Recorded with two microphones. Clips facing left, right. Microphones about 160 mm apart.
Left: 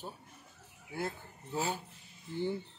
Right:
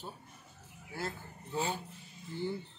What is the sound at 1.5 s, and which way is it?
Speech, 5° left (ahead or behind).